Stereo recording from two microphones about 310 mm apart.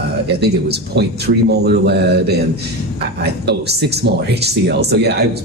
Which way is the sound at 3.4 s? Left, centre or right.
Right.